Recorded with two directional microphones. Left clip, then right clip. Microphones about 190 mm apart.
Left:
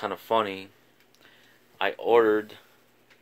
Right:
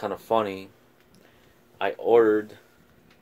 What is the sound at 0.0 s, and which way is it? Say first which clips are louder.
Speech: right 1 dB; 5° left (ahead or behind).